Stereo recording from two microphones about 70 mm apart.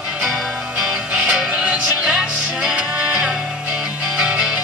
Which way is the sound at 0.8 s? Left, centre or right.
Centre.